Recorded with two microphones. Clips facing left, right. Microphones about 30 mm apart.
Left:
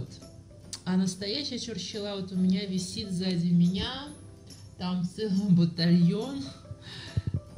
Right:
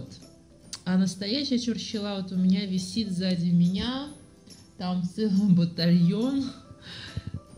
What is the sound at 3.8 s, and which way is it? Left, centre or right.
Speech, right.